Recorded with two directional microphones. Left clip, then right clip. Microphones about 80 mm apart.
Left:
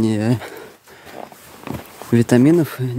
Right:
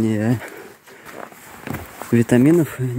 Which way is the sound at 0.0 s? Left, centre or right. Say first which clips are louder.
Left 1 dB; left.